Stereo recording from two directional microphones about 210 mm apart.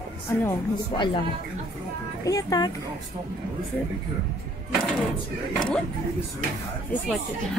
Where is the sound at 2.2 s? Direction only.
15° left (ahead or behind).